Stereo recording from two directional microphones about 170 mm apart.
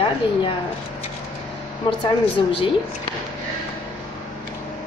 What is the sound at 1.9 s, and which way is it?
Speech, 30° left (ahead or behind).